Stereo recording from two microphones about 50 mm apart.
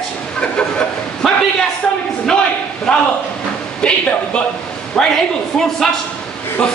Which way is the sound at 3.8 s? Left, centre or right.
Centre.